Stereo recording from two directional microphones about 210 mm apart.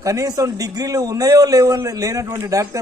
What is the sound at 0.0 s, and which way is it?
A man's voice, 15° right (ahead or behind).